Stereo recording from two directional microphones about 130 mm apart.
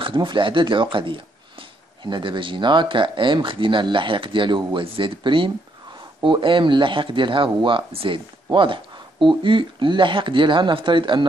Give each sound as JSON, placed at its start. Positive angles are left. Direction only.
{"t": 0.0, "sound": "speech", "side_deg": -40}